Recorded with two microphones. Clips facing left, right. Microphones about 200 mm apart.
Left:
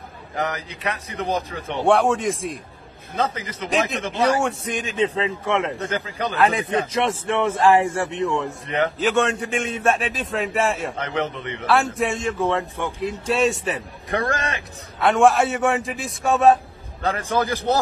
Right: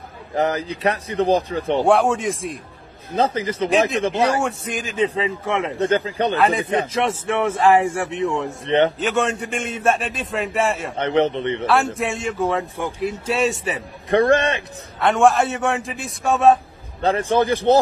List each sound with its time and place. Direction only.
0.3 s a man's voice: 35° right (ahead or behind)
1.8 s a man's voice: centre (ahead or behind)
3.2 s a man's voice: 30° right (ahead or behind)
4.4 s a man's voice: centre (ahead or behind)
5.8 s a man's voice: 30° right (ahead or behind)
6.3 s a man's voice: centre (ahead or behind)
6.6 s a man's voice: 30° right (ahead or behind)
6.9 s a man's voice: centre (ahead or behind)
8.6 s a man's voice: 35° right (ahead or behind)
8.9 s a man's voice: centre (ahead or behind)
11.0 s a man's voice: 30° right (ahead or behind)
11.6 s a man's voice: centre (ahead or behind)
15.0 s a man's voice: centre (ahead or behind)
17.0 s a man's voice: 30° right (ahead or behind)